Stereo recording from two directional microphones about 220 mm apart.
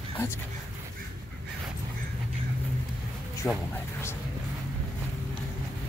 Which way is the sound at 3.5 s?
10° left (ahead or behind).